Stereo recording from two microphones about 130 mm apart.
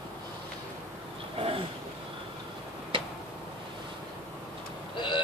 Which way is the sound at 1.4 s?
45° right (ahead or behind).